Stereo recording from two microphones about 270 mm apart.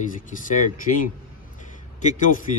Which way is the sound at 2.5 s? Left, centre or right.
Left.